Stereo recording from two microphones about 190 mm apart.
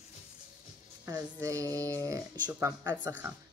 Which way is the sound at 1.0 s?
15° right (ahead or behind).